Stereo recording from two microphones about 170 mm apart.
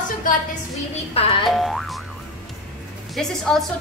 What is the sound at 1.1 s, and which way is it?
Boing, 30° left (ahead or behind).